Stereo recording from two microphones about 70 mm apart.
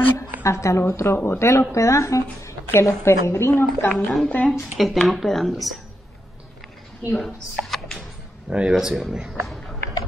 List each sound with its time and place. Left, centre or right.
0.4 s a woman's voice: left
3.9 s speech: centre
7.1 s speech: centre
8.5 s speech: centre
9.3 s a sound: centre